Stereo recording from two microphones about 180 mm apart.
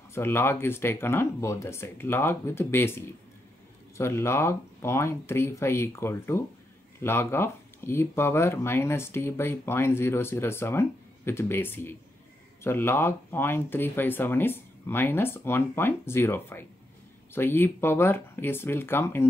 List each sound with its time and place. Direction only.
0.1 s speech: 15° left (ahead or behind)